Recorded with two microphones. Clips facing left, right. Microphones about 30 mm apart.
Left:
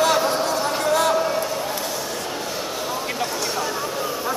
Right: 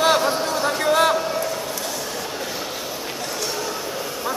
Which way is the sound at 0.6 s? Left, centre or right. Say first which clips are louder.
Right 4 dB; right.